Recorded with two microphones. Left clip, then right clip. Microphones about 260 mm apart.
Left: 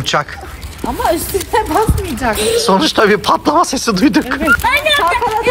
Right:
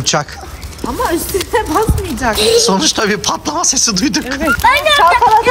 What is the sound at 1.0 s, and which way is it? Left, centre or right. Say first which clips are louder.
Speech: left 2 dB; centre.